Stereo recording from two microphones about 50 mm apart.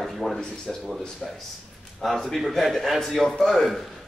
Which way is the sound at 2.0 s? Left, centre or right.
Centre.